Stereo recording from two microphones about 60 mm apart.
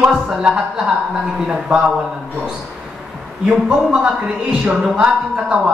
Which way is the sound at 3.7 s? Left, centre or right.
Centre.